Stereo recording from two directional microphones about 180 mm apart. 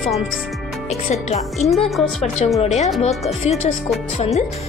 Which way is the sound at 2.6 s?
40° left (ahead or behind).